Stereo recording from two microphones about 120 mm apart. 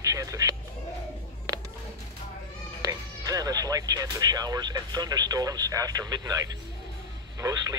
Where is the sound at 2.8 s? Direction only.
30° right (ahead or behind).